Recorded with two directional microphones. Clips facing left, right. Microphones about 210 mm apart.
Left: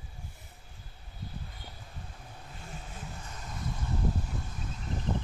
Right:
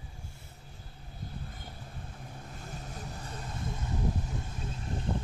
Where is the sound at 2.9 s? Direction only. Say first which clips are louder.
Right 3 dB; 35° right (ahead or behind).